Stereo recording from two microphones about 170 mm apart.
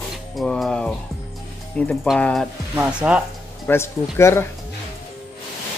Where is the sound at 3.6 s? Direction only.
15° left (ahead or behind).